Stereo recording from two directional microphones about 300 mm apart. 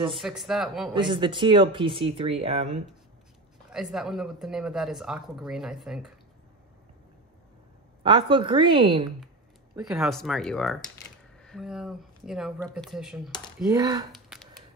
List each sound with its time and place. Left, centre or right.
0.2 s speech: centre
0.9 s speech: centre
3.7 s speech: centre
8.0 s speech: centre
9.8 s speech: centre
13.7 s speech: centre
14.1 s a sound: centre